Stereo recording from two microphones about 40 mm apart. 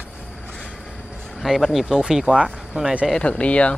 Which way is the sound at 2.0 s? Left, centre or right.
Centre.